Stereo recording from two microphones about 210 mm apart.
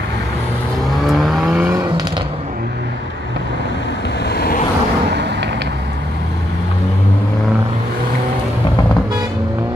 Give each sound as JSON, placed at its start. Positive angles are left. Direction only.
{"t": 1.0, "sound": "vehicle", "side_deg": 0}
{"t": 4.2, "sound": "vehicle", "side_deg": 50}
{"t": 5.1, "sound": "vehicle", "side_deg": -55}